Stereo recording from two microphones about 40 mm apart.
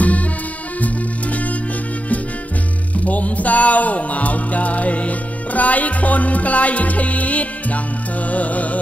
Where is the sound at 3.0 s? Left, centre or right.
Left.